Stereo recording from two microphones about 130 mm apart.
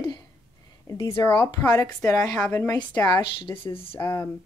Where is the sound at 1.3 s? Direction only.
30° left (ahead or behind).